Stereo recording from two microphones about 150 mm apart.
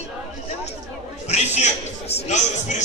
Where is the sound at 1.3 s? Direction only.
50° left (ahead or behind).